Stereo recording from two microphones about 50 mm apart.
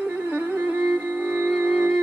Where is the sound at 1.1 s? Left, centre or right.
Right.